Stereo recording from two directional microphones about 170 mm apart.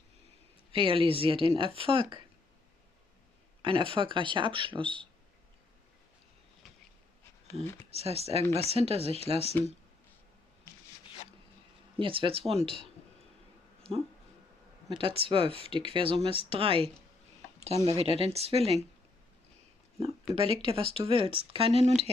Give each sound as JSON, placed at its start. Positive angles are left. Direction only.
{"t": 0.7, "sound": "speech", "side_deg": -30}
{"t": 3.6, "sound": "speech", "side_deg": -30}
{"t": 7.9, "sound": "speech", "side_deg": -35}
{"t": 12.0, "sound": "speech", "side_deg": -30}
{"t": 14.9, "sound": "speech", "side_deg": -30}
{"t": 20.0, "sound": "speech", "side_deg": -35}